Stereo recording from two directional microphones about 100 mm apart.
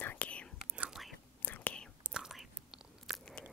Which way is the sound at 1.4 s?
15° left (ahead or behind).